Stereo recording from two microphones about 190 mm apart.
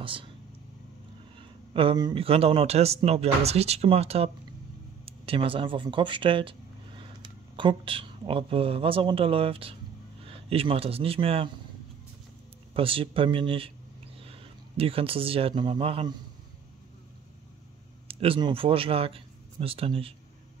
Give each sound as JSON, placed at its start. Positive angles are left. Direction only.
{"t": 0.0, "sound": "speech", "side_deg": -25}
{"t": 1.7, "sound": "speech", "side_deg": -25}
{"t": 12.7, "sound": "speech", "side_deg": -30}
{"t": 18.0, "sound": "speech", "side_deg": -30}